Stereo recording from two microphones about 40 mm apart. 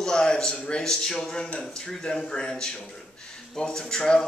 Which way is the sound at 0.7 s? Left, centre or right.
Left.